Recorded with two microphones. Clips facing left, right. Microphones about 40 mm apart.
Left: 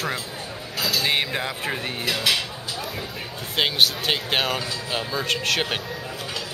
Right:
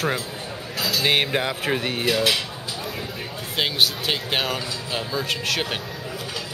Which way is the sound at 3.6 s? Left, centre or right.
Centre.